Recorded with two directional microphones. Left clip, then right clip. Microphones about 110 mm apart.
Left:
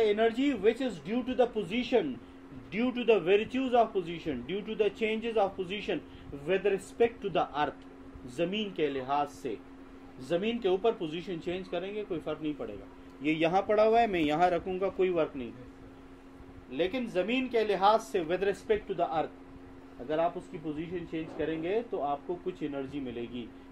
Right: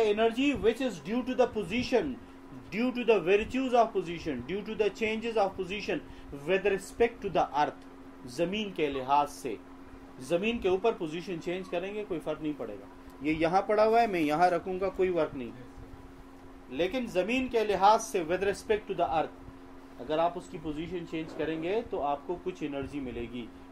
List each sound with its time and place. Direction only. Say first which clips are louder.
0.4 s speech: even; 5° left (ahead or behind)
13.2 s speech: even; 20° left (ahead or behind)
16.7 s speech: right 1 dB; 20° left (ahead or behind)